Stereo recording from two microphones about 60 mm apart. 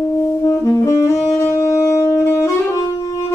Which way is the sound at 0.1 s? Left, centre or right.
Left.